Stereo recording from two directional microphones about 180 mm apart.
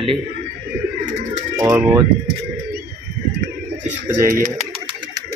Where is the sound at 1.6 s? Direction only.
15° right (ahead or behind).